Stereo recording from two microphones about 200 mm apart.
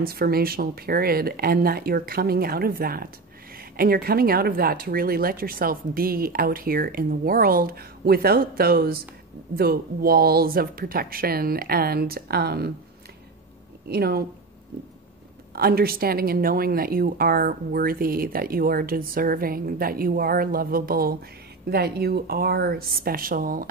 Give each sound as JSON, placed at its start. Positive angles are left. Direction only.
{"t": 0.0, "sound": "a woman's voice", "side_deg": -50}
{"t": 13.8, "sound": "a woman's voice", "side_deg": -50}
{"t": 15.5, "sound": "a woman's voice", "side_deg": -50}